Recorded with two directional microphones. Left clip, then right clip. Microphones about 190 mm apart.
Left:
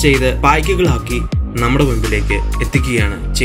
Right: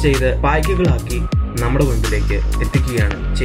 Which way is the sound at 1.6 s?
15° left (ahead or behind).